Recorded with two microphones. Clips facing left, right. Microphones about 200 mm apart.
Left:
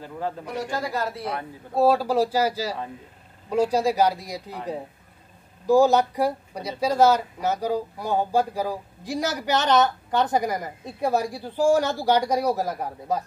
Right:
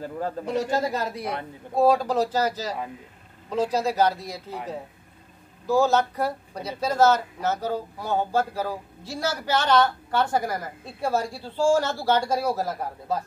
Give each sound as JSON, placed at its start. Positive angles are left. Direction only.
{"t": 0.5, "sound": "speech", "side_deg": -25}
{"t": 1.8, "sound": "speech", "side_deg": 5}